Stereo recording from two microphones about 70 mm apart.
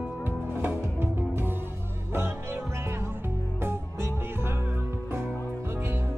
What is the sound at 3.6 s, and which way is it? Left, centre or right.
Music, right.